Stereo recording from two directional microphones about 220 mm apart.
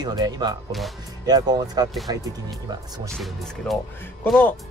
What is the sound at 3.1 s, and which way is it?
Speech, centre (ahead or behind).